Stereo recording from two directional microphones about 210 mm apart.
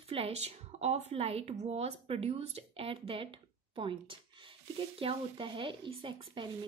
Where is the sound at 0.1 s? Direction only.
30° right (ahead or behind).